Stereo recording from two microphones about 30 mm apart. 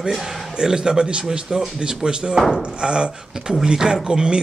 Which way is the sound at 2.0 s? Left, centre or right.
Right.